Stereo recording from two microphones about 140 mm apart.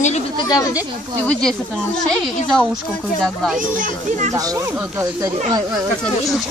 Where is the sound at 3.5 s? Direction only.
65° right (ahead or behind).